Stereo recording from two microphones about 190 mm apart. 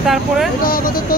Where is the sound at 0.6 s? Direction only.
50° left (ahead or behind).